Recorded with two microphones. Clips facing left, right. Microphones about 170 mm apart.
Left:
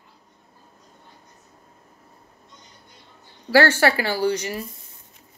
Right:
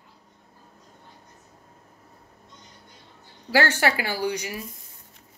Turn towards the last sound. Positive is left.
turn(degrees=-10)  # may be behind; listen again after turning